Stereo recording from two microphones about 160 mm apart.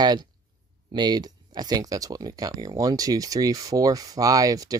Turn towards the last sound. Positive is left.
turn(degrees=-20)  # may be behind; listen again after turning